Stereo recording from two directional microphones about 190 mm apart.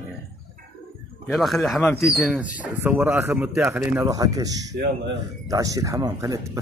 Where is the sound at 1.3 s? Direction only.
Centre (ahead or behind).